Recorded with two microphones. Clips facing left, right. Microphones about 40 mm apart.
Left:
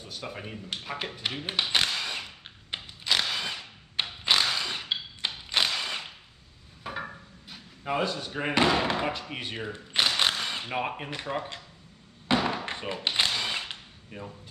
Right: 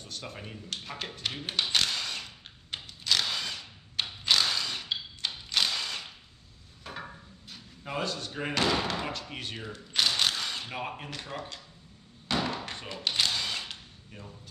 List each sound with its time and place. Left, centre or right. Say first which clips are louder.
0.0 s a sound: left 3 dB; centre
6.8 s speech: left 5 dB; centre
12.3 s thunk: left 4 dB; left